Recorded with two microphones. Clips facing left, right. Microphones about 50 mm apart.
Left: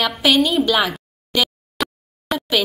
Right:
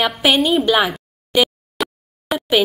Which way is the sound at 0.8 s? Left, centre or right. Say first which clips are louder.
Right 2 dB; centre.